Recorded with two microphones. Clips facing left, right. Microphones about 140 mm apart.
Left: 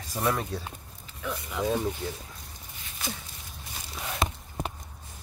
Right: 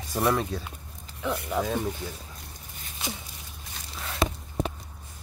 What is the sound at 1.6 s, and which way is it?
Speech, 45° right (ahead or behind).